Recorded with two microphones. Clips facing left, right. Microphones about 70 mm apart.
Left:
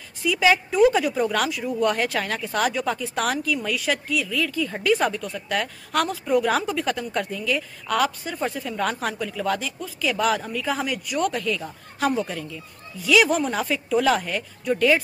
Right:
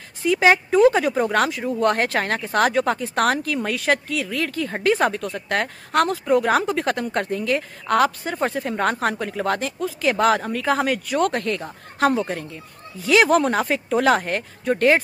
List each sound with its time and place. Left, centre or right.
0.2 s a woman's voice: right
1.8 s speech: right
4.8 s a woman's voice: right
5.2 s speech: right
12.3 s a woman's voice: right
13.3 s speech: right